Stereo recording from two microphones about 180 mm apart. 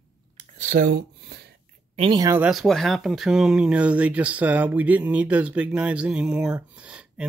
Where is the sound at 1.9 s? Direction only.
30° right (ahead or behind).